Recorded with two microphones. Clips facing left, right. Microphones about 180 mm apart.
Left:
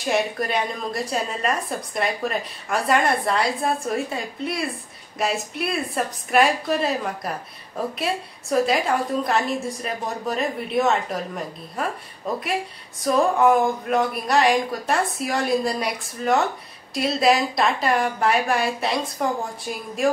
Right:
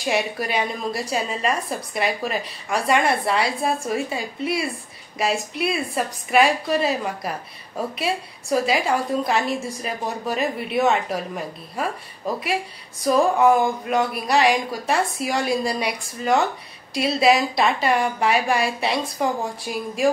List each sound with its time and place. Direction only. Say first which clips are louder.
0.0 s a woman's voice: left 1 dB; 5° right (ahead or behind)